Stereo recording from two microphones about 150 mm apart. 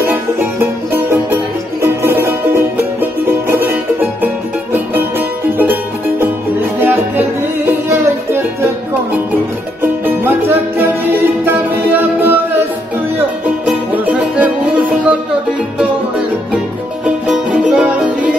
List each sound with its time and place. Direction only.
0.0 s music: 15° right (ahead or behind)
5.6 s music: 15° right (ahead or behind)
9.8 s music: 15° right (ahead or behind)
13.7 s music: 10° right (ahead or behind)
17.0 s music: 5° right (ahead or behind)